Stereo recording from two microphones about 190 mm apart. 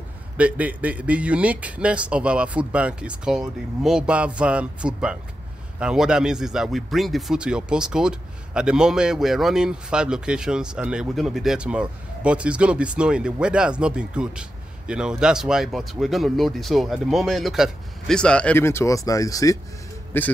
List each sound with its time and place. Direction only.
0.4 s a man's voice: 10° right (ahead or behind); by 20.3 s 10° left (ahead or behind)